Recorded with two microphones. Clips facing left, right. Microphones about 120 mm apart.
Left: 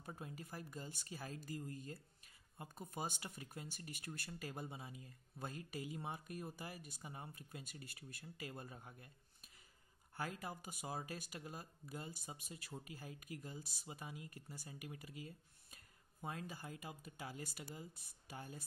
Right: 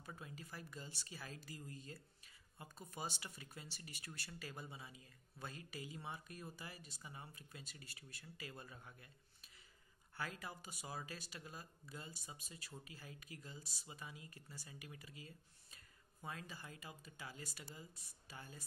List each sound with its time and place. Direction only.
0.0 s speech: 50° left (ahead or behind)
10.1 s speech: 50° left (ahead or behind)